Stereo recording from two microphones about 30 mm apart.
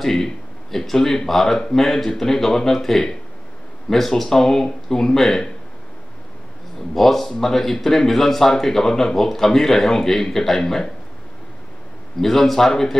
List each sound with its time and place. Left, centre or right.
0.0 s speech: centre
4.3 s speech: centre
6.9 s speech: centre
12.2 s speech: centre